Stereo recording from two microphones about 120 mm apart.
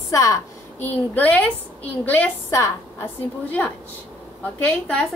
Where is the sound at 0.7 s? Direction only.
15° left (ahead or behind).